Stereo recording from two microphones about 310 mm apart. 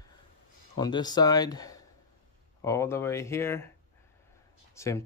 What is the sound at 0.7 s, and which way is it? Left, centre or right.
Speech, centre.